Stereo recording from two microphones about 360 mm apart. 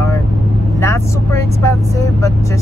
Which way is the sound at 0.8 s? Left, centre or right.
Centre.